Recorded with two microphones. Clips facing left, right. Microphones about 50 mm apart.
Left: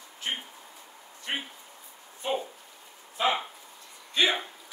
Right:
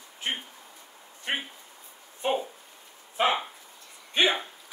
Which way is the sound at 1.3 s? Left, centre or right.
Right.